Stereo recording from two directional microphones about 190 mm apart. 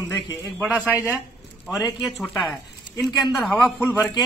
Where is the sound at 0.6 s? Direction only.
5° right (ahead or behind).